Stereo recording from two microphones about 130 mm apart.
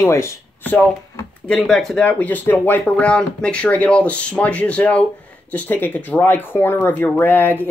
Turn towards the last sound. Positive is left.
turn(degrees=15)  # may be behind; listen again after turning